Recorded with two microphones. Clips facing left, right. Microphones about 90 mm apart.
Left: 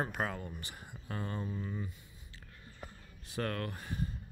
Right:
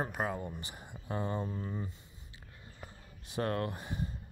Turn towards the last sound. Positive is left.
turn(degrees=-25)  # may be behind; listen again after turning